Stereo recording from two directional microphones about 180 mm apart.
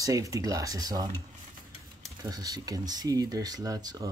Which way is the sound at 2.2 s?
20° right (ahead or behind).